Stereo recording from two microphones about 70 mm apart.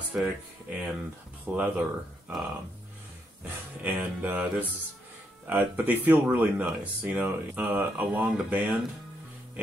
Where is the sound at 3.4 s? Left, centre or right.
Right.